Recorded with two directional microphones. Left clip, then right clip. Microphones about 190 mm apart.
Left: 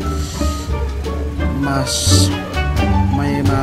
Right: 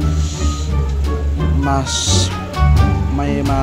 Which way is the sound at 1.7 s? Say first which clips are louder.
Even; 20° left (ahead or behind).